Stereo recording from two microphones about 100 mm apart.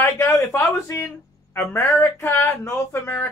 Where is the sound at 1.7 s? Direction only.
25° left (ahead or behind).